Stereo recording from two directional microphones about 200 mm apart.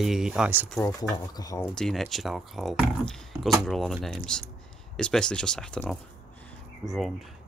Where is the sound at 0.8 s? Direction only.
20° left (ahead or behind).